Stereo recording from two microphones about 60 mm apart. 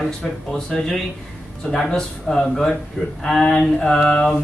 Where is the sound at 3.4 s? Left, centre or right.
Centre.